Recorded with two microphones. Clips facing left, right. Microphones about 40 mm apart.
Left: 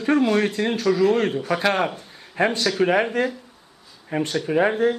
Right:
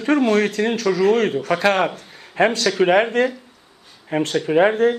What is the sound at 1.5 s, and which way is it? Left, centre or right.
Speech, right.